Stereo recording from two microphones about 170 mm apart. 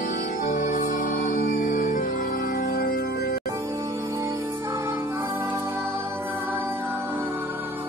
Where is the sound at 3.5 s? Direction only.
20° right (ahead or behind).